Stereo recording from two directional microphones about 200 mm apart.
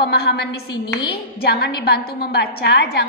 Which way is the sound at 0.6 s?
20° left (ahead or behind).